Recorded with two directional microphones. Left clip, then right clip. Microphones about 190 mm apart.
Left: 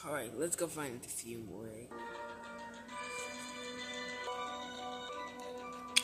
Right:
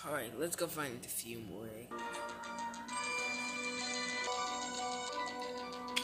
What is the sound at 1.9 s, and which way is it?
Music, 35° right (ahead or behind).